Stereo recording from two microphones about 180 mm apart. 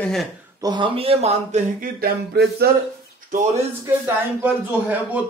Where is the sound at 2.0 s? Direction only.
65° right (ahead or behind).